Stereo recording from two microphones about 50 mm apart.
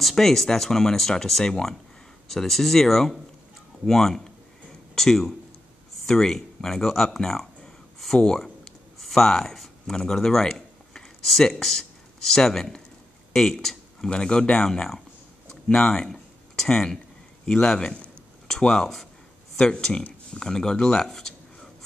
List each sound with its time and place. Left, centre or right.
0.0 s speech: centre
6.0 s a sound: centre
10.0 s speech: centre
14.1 s speech: centre